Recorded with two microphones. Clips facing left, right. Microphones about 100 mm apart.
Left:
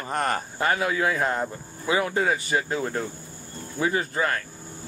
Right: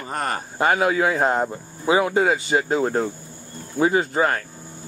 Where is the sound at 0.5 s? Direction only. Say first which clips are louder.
Right 8 dB; 25° right (ahead or behind).